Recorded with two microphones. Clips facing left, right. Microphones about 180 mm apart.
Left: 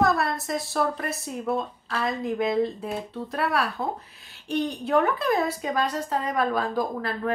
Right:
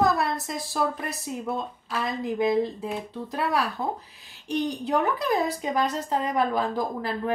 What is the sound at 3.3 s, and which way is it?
A woman's voice, 20° right (ahead or behind).